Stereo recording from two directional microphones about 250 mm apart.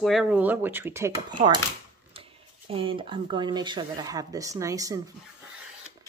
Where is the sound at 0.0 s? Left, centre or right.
Centre.